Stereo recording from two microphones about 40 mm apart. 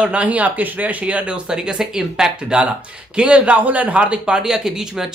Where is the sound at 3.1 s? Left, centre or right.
Right.